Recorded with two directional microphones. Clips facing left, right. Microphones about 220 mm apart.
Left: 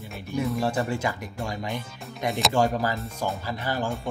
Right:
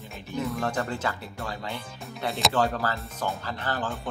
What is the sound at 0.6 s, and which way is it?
Speech, 10° left (ahead or behind).